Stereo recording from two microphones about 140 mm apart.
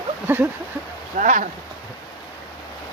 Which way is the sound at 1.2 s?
65° right (ahead or behind).